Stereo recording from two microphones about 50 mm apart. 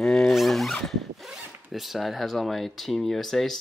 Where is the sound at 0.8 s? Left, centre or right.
Centre.